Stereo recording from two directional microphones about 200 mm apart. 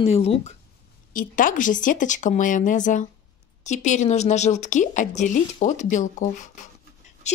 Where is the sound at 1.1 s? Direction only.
45° left (ahead or behind).